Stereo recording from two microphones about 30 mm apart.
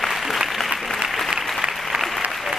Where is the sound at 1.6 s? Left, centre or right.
Right.